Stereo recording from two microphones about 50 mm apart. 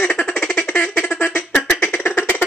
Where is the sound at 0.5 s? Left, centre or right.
Left.